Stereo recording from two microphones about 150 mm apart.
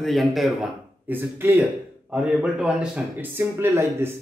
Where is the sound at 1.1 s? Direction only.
15° right (ahead or behind).